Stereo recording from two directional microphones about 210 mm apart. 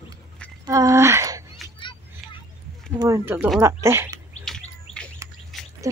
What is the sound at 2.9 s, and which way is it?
Speech, 15° right (ahead or behind).